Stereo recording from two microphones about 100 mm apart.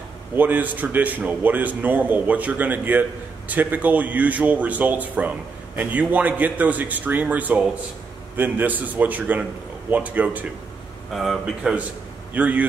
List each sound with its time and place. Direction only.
0.4 s a man's voice: 20° right (ahead or behind)
11.1 s speech: centre (ahead or behind)
12.4 s a man's voice: 15° right (ahead or behind)